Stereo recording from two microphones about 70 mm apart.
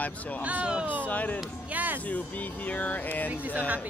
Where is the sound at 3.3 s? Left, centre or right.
Right.